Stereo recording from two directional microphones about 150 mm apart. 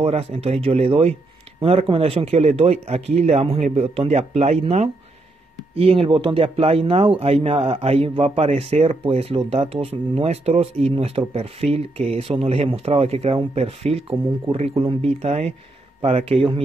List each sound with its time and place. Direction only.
0.0 s speech: 45° right (ahead or behind)